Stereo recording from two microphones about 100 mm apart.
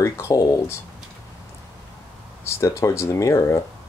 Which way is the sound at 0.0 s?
30° left (ahead or behind).